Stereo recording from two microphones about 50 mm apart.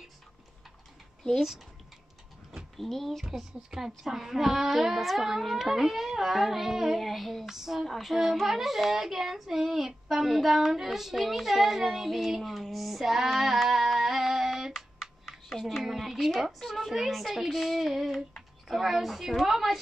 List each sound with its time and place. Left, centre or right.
1.3 s speech: centre
15.0 s computer keyboard: centre
15.8 s speech: centre